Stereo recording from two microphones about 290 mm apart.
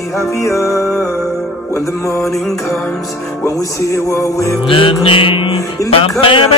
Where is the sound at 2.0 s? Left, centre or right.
Centre.